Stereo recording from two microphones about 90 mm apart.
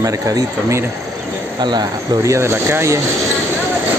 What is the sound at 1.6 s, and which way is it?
Speech, 55° right (ahead or behind).